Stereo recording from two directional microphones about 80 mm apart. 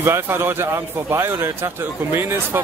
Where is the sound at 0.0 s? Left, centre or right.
Right.